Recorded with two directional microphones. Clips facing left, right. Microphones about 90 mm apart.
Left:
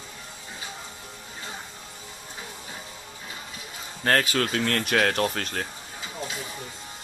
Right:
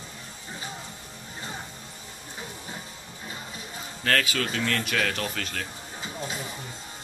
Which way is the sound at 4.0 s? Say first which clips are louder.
Left 3 dB; 30° left (ahead or behind).